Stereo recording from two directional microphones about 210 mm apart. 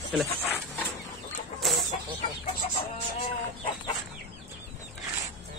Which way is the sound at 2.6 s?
30° left (ahead or behind).